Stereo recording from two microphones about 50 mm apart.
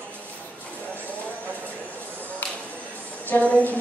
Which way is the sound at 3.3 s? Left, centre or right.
Left.